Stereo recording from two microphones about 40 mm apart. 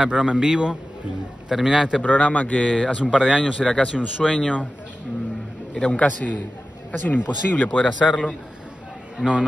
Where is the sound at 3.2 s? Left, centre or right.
Centre.